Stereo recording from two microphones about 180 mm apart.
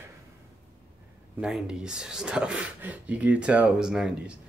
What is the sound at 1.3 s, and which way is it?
Speech, 5° right (ahead or behind).